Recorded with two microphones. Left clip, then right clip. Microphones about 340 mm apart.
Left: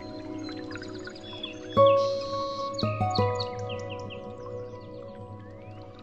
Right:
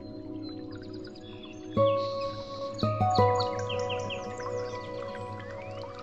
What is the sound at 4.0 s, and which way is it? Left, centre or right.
Music, right.